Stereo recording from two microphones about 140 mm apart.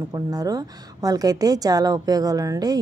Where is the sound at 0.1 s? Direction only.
25° right (ahead or behind).